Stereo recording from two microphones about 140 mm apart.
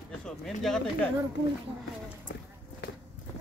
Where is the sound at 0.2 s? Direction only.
5° left (ahead or behind).